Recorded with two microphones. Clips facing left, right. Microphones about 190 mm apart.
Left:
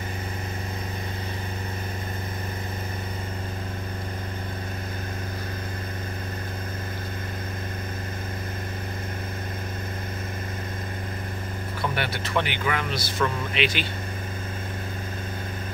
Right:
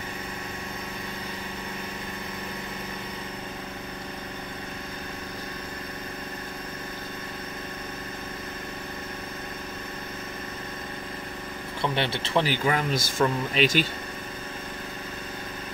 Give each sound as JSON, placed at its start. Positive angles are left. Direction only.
{"t": 11.8, "sound": "speech", "side_deg": -25}